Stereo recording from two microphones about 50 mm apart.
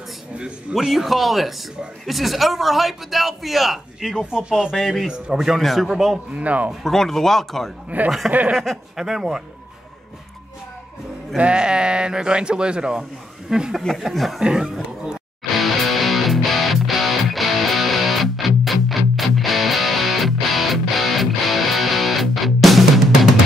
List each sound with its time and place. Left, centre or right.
0.7 s a man's voice: centre
4.3 s speech: centre
4.7 s a man's voice: centre
5.0 s a man's voice: centre
6.3 s speech: right
6.8 s speech: centre
7.9 s speech: right
8.5 s speech: centre
11.3 s speech: right
13.9 s a man's voice: centre
14.4 s speech: centre
15.5 s music: centre